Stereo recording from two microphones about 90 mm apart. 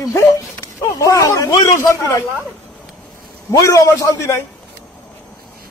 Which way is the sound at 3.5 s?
30° left (ahead or behind).